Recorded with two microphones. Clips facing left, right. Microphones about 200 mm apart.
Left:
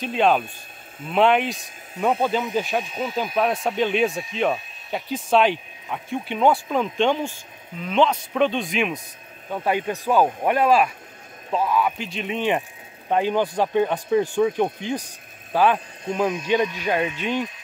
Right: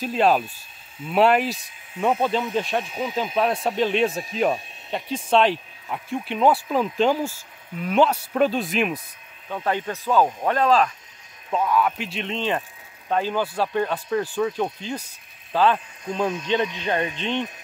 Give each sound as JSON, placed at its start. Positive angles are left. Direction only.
{"t": 0.0, "sound": "speech", "side_deg": -5}
{"t": 9.5, "sound": "speech", "side_deg": 10}
{"t": 12.3, "sound": "speech", "side_deg": 15}